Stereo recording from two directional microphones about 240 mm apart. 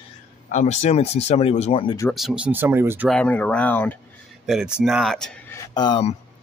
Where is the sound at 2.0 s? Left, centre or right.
Centre.